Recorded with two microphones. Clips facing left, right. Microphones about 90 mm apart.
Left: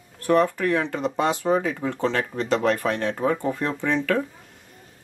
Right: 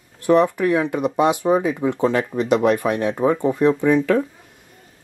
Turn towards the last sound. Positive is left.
turn(degrees=-15)  # may be behind; listen again after turning